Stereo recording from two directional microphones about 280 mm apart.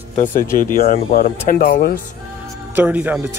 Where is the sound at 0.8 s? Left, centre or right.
Left.